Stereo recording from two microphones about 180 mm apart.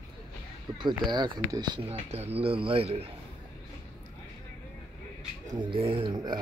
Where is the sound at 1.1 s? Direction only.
25° right (ahead or behind).